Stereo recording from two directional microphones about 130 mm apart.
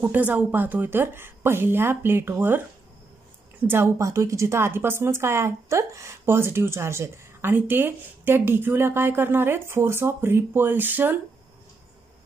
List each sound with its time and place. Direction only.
0.0 s a woman's voice: 15° right (ahead or behind)